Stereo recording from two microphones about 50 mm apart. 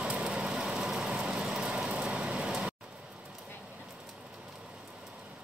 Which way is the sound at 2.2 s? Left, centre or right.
Right.